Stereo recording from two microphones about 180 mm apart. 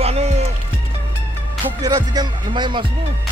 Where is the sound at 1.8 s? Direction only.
20° right (ahead or behind).